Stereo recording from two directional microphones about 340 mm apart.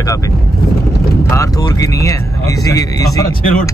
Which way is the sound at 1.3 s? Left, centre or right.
Centre.